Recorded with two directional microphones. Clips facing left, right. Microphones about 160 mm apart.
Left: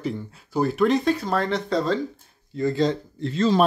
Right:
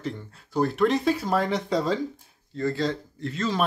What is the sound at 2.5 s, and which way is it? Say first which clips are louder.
Speech: left 4 dB; 15° left (ahead or behind).